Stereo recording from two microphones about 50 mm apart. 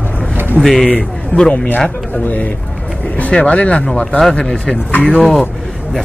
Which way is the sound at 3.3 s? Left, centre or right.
Left.